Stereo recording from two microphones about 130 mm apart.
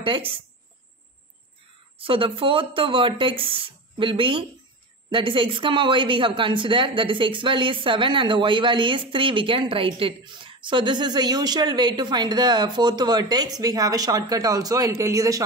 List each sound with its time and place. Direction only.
0.0 s speech: 45° right (ahead or behind)
2.0 s speech: 45° right (ahead or behind); by 15.4 s 25° right (ahead or behind)